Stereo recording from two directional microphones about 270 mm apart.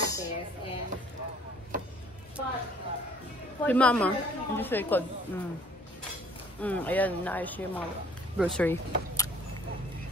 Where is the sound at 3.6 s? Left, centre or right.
Centre.